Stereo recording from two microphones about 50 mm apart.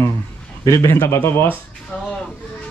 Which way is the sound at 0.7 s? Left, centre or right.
Left.